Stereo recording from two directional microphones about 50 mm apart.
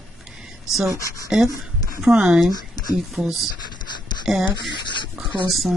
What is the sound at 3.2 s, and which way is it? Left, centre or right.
Speech, left.